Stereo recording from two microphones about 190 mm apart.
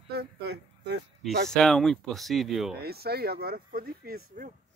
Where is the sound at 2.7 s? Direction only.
55° right (ahead or behind).